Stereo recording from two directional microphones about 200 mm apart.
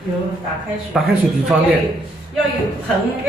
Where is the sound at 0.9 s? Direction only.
Centre (ahead or behind).